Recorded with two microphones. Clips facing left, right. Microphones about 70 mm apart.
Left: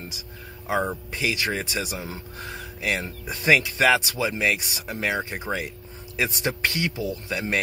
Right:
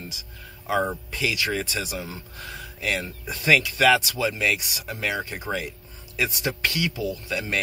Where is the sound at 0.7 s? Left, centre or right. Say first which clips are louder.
Right 1 dB; left.